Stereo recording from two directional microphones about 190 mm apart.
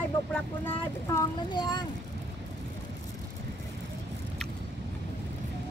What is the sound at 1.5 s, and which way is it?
Speech, 25° left (ahead or behind).